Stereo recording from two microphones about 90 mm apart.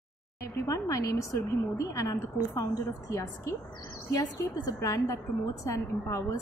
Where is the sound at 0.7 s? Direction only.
35° left (ahead or behind).